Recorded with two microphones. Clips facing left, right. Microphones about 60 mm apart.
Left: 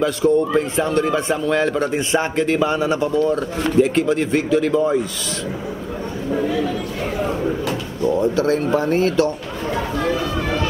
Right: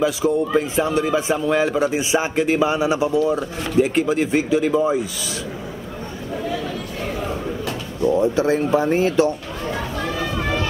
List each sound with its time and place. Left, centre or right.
0.0 s a man's voice: centre
8.2 s speech: centre